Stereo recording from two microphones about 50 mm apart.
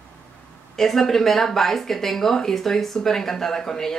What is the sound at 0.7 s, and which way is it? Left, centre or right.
Speech, centre.